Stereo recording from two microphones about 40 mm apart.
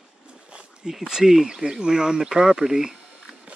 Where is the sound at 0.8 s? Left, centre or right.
Centre.